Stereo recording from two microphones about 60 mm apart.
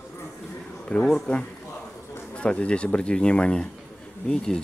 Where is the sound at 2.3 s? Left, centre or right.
Centre.